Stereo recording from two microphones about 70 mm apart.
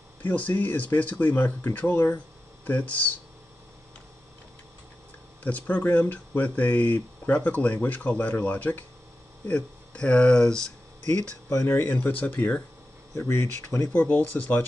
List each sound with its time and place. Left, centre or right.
0.2 s speech: left
5.4 s speech: left
11.6 s speech: left
13.3 s speech: left
13.9 s speech: left